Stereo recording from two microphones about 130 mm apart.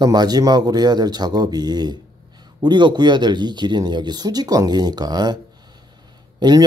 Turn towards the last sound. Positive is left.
turn(degrees=-35)  # may be behind; listen again after turning